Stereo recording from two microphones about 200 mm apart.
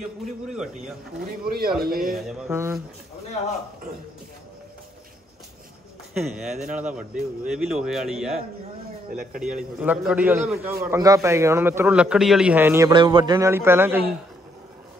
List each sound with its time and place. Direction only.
0.2 s speech: 5° right (ahead or behind)
1.2 s speech: 50° right (ahead or behind)
2.1 s a man's voice: 5° right (ahead or behind)
6.1 s speech: 35° right (ahead or behind)
6.9 s speech: 5° right (ahead or behind)
9.1 s speech: 45° right (ahead or behind)
9.4 s a man's voice: 5° right (ahead or behind)
12.9 s a man's voice: 25° right (ahead or behind)